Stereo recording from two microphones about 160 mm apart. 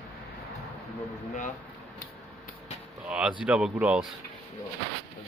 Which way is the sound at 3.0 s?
5° right (ahead or behind).